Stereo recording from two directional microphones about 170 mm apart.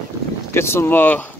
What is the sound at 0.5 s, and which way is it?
Speech, 15° left (ahead or behind).